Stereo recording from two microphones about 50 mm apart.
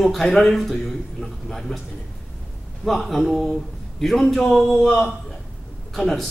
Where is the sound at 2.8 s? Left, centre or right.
Centre.